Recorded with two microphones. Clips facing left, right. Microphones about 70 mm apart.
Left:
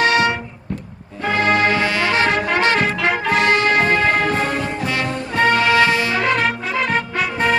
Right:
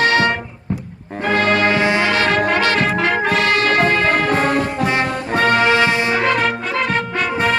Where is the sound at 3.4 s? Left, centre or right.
Left.